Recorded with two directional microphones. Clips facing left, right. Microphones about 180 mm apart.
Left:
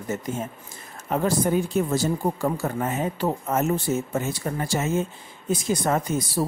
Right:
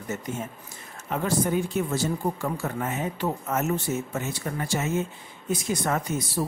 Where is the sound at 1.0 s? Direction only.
35° left (ahead or behind).